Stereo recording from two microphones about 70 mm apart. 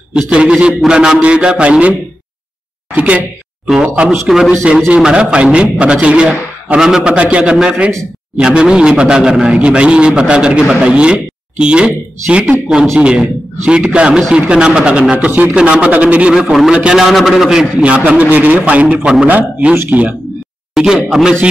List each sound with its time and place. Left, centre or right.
0.1 s a man's voice: centre
4.1 s a man's voice: centre
4.5 s a man's voice: centre
15.1 s a man's voice: right
20.7 s a man's voice: centre